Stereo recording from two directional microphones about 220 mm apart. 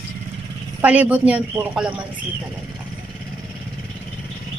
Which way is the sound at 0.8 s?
5° right (ahead or behind).